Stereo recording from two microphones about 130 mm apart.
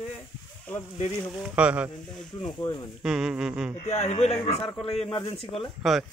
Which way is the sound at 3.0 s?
5° right (ahead or behind).